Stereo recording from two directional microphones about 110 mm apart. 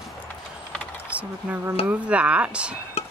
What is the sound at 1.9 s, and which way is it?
Speech, 10° right (ahead or behind).